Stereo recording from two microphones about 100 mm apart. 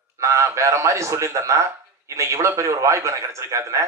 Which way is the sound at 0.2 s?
30° right (ahead or behind).